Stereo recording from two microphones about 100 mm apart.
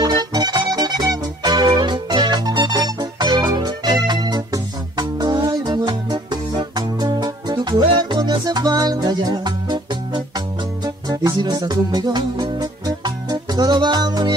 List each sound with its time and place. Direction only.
0.0 s music: 45° right (ahead or behind)
11.3 s music: 45° right (ahead or behind)